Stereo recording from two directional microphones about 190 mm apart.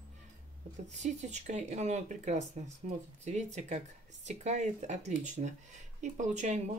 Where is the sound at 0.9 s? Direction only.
40° right (ahead or behind).